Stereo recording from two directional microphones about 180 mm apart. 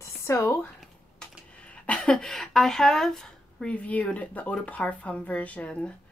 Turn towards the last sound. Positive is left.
turn(degrees=5)  # may be behind; listen again after turning